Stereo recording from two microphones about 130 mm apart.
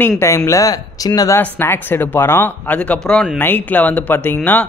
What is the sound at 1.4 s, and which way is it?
Speech, 15° left (ahead or behind).